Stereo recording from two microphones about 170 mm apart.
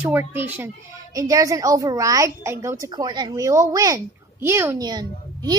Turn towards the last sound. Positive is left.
turn(degrees=-25)  # may be behind; listen again after turning